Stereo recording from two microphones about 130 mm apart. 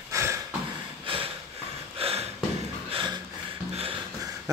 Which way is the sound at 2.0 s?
50° right (ahead or behind).